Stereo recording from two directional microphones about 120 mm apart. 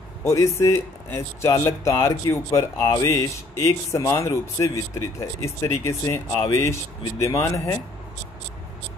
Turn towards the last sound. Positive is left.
turn(degrees=25)  # may be behind; listen again after turning